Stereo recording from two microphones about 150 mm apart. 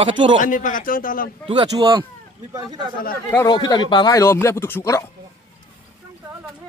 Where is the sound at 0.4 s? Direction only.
60° left (ahead or behind).